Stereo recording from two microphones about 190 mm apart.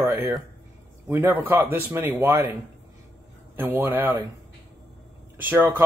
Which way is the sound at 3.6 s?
10° right (ahead or behind).